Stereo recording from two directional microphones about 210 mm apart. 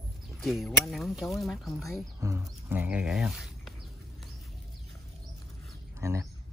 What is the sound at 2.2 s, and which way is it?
Speech, 15° right (ahead or behind).